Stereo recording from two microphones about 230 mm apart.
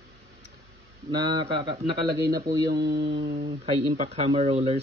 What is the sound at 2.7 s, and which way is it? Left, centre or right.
Mantra, right.